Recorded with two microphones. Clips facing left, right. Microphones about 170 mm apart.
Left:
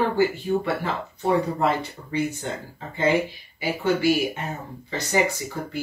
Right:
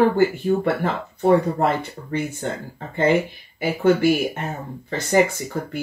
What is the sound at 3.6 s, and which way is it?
Speech, 50° right (ahead or behind).